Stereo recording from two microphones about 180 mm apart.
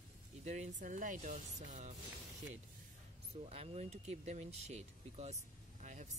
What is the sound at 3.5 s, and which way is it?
Speech, 35° right (ahead or behind).